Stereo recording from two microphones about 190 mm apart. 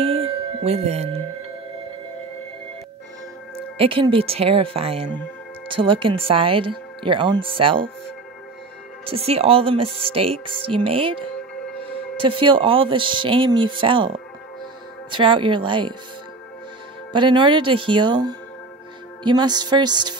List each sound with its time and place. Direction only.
0.0 s music: 30° right (ahead or behind)
3.7 s speech: 30° right (ahead or behind)
9.0 s speech: 30° right (ahead or behind)
17.1 s speech: 25° right (ahead or behind)